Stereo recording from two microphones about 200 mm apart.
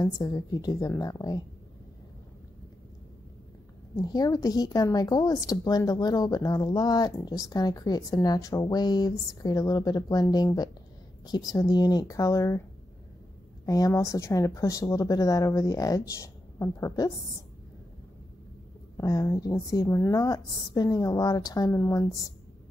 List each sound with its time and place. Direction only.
0.0 s a woman's voice: 20° left (ahead or behind)
3.9 s a woman's voice: 20° left (ahead or behind)
13.7 s speech: 15° left (ahead or behind)
18.9 s speech: 15° left (ahead or behind)